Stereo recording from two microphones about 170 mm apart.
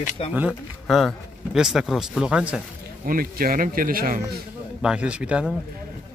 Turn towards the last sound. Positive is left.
turn(degrees=-5)  # may be behind; listen again after turning